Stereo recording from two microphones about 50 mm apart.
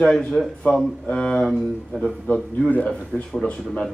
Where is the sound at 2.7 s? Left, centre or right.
Left.